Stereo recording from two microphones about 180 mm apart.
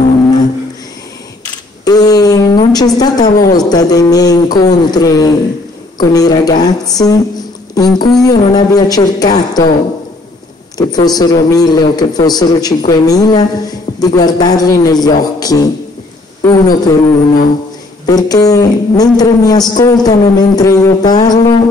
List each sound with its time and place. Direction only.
1.9 s a sound: 20° left (ahead or behind)
3.0 s a man's voice: 20° left (ahead or behind)
10.8 s a man's voice: 20° left (ahead or behind)
18.0 s a man's voice: 20° left (ahead or behind)